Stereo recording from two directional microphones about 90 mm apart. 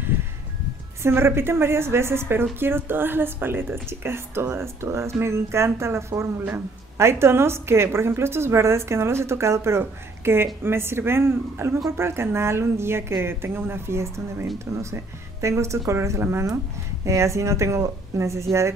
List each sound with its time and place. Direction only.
1.0 s speech: 30° right (ahead or behind)